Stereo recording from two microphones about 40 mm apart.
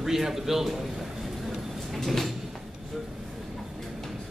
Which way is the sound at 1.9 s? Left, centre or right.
Centre.